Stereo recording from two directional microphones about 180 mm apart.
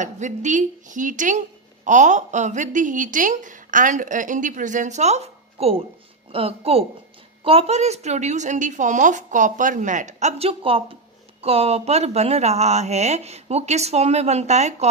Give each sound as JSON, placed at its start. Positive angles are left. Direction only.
{"t": 0.0, "sound": "a woman's voice", "side_deg": -40}